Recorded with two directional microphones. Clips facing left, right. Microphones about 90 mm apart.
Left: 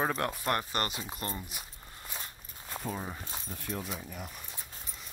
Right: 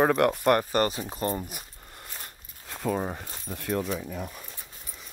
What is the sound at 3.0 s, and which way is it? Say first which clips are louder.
Speech: right 7 dB; 55° right (ahead or behind).